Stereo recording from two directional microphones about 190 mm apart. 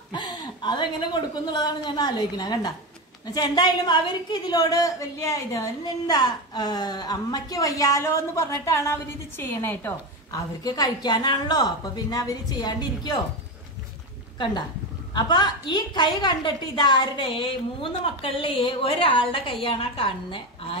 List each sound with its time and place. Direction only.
0.1 s a woman's voice: 25° left (ahead or behind)
15.1 s a woman's voice: 20° left (ahead or behind)